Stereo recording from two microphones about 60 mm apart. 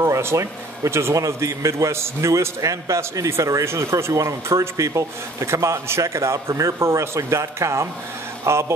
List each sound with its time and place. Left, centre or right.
0.0 s a man's voice: right
3.9 s a man's voice: right